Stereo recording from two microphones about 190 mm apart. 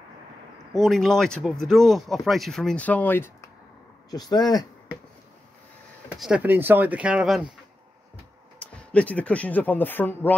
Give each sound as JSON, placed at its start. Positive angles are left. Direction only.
{"t": 0.7, "sound": "speech", "side_deg": 0}
{"t": 6.1, "sound": "speech", "side_deg": -5}
{"t": 8.5, "sound": "speech", "side_deg": 5}